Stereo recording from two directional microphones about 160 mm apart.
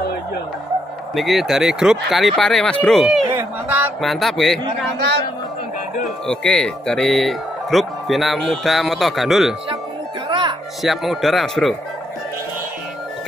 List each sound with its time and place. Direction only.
1.1 s speech: centre (ahead or behind)
3.3 s speech: 10° right (ahead or behind)
4.0 s speech: centre (ahead or behind)
6.0 s speech: 5° left (ahead or behind)
10.2 s music: 30° right (ahead or behind)
10.8 s speech: centre (ahead or behind)